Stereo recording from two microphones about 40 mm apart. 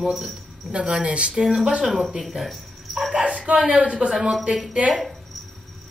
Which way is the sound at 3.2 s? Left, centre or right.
Right.